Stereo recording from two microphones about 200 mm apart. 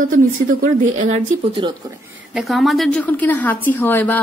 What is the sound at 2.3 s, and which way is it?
A woman's voice, centre (ahead or behind).